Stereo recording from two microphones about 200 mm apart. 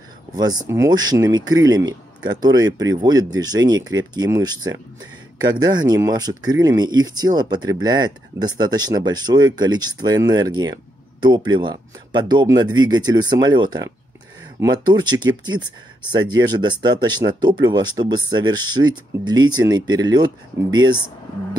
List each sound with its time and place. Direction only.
0.4 s speech: 20° right (ahead or behind)